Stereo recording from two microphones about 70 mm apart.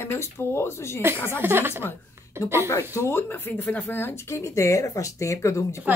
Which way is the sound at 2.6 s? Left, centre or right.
Left.